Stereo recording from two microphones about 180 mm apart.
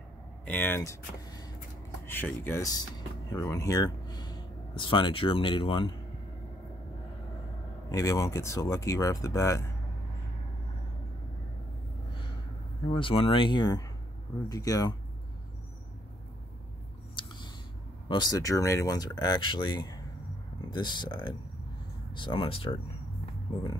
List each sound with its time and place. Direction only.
0.5 s speech: 10° left (ahead or behind); by 5.9 s 30° left (ahead or behind)
7.9 s speech: 20° left (ahead or behind)
12.9 s speech: 30° left (ahead or behind)
17.1 s a sound: 25° left (ahead or behind)
18.0 s speech: 25° left (ahead or behind)